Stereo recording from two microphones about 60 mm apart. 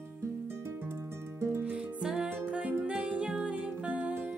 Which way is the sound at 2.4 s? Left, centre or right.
Right.